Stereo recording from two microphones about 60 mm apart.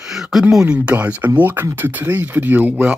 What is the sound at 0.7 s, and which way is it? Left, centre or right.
Speech, right.